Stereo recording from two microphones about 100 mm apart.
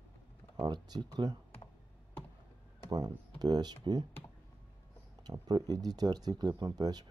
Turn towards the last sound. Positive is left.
turn(degrees=-40)  # may be behind; listen again after turning